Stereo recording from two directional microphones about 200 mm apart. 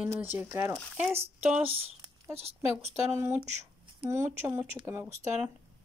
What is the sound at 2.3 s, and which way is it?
Speech, 30° right (ahead or behind).